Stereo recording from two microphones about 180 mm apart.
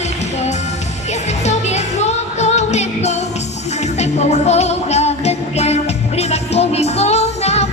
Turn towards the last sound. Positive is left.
turn(degrees=35)  # may be behind; listen again after turning